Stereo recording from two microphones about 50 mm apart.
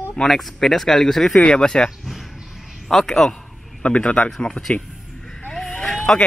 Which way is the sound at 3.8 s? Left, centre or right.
Left.